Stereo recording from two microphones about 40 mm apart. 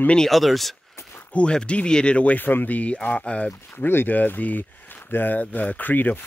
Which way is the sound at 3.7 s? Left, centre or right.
Left.